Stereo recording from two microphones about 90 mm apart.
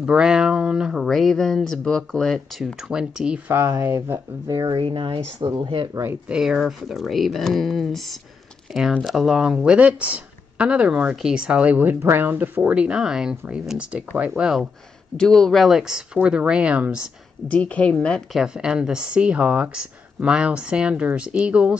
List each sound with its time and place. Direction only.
0.0 s speech: 10° right (ahead or behind)
2.6 s speech: 10° right (ahead or behind)
3.4 s speech: 30° right (ahead or behind)
4.7 s speech: 70° right (ahead or behind)
5.6 s speech: 55° right (ahead or behind)
6.2 s speech: 5° right (ahead or behind)
15.1 s speech: 5° left (ahead or behind); by 17.1 s 10° right (ahead or behind)
17.5 s speech: 15° left (ahead or behind)
18.3 s speech: 10° right (ahead or behind)